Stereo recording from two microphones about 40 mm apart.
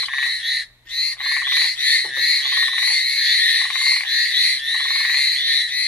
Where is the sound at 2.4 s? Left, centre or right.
Left.